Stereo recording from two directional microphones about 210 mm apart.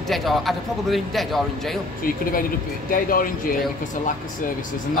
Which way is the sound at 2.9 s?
40° left (ahead or behind).